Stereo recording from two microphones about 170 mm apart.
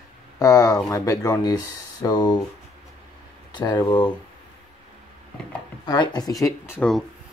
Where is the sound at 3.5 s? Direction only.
25° left (ahead or behind).